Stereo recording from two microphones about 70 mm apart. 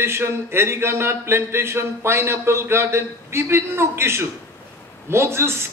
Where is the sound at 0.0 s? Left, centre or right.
Right.